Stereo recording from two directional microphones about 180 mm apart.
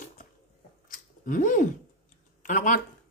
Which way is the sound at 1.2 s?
45° left (ahead or behind).